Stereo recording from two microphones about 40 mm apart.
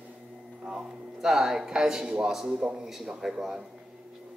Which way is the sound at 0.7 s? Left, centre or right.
Centre.